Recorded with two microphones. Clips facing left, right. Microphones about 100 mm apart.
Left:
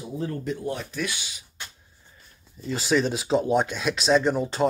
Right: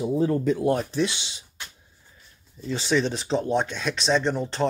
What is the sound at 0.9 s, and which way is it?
Speech, 25° right (ahead or behind).